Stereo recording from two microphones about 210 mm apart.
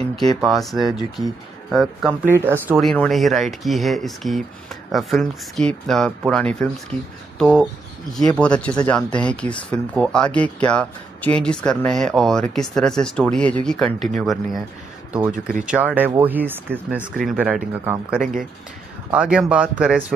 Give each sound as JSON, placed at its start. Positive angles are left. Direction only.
{"t": 0.4, "sound": "speech", "side_deg": 0}
{"t": 1.2, "sound": "speech", "side_deg": 15}
{"t": 1.7, "sound": "speech", "side_deg": 0}
{"t": 2.8, "sound": "speech", "side_deg": 0}
{"t": 7.3, "sound": "a sound", "side_deg": 5}
{"t": 8.4, "sound": "speech", "side_deg": 5}
{"t": 15.3, "sound": "speech", "side_deg": -40}
{"t": 15.6, "sound": "speech", "side_deg": -5}